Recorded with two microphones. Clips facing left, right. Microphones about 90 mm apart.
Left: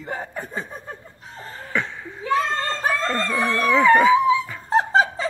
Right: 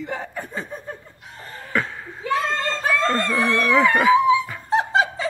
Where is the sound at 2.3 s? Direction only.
40° left (ahead or behind).